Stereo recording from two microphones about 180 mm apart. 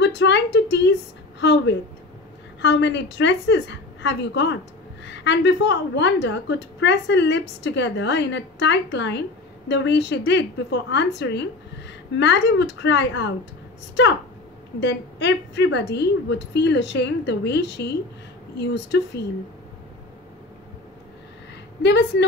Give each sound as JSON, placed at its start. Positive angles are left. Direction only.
{"t": 0.0, "sound": "a woman's voice", "side_deg": 75}
{"t": 14.8, "sound": "a woman's voice", "side_deg": 75}
{"t": 21.8, "sound": "a woman's voice", "side_deg": 70}